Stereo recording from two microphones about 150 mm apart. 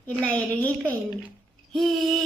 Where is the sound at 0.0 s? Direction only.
10° left (ahead or behind).